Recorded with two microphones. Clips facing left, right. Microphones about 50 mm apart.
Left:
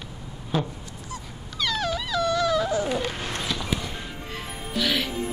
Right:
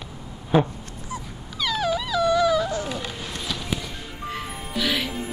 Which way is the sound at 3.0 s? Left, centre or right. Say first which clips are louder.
Left 3 dB; left.